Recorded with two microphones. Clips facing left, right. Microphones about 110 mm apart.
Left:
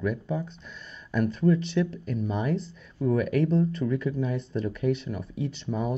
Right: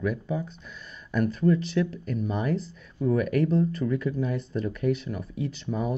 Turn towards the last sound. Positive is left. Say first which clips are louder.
# even
turn(degrees=0)  # may be behind; listen again after turning